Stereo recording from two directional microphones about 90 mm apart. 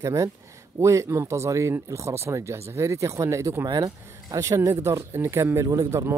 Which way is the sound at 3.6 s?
45° right (ahead or behind).